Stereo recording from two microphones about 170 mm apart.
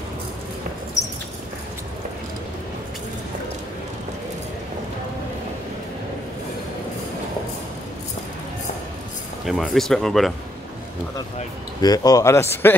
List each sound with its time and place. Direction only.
9.5 s speech: centre (ahead or behind)
11.8 s speech: 20° left (ahead or behind)